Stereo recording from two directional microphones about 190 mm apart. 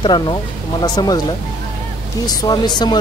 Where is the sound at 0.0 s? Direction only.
25° left (ahead or behind).